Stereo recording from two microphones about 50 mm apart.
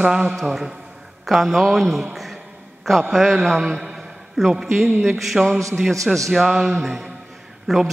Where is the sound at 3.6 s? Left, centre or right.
Centre.